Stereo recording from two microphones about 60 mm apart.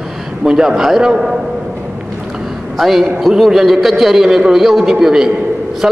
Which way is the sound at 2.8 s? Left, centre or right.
Centre.